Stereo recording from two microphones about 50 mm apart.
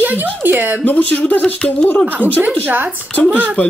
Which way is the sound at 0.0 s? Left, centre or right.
Right.